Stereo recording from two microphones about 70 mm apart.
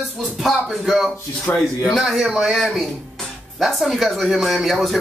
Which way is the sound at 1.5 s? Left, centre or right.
Left.